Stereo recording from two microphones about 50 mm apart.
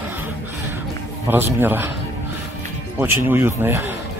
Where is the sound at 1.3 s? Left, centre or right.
Right.